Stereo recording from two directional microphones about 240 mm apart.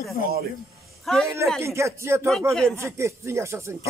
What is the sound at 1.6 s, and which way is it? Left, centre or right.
Speech, centre.